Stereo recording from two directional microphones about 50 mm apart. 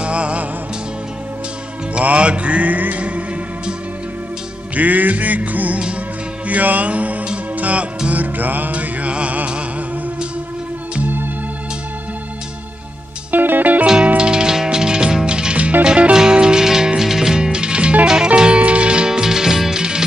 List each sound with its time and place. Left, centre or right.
0.0 s music: right
2.0 s music: right
4.7 s music: right
6.4 s mantra: right
7.5 s music: right
13.3 s music: right
14.0 s music: centre